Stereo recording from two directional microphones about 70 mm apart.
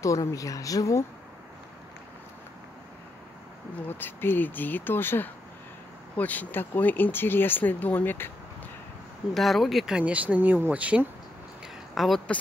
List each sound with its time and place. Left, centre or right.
0.0 s a woman's voice: left
3.9 s speech: left
9.3 s speech: centre
9.9 s speech: centre
11.9 s speech: centre